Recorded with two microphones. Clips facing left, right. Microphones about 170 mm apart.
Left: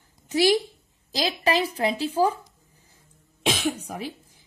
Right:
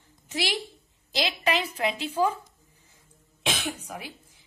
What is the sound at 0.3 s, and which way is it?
A woman's voice, 40° left (ahead or behind).